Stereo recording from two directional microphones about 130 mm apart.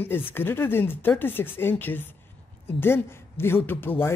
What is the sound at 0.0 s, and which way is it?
Speech, 15° left (ahead or behind).